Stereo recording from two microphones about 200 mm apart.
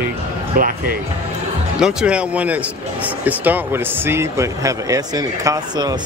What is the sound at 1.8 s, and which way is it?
Speech, 5° right (ahead or behind).